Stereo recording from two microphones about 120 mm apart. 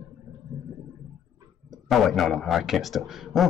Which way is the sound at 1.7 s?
Centre (ahead or behind).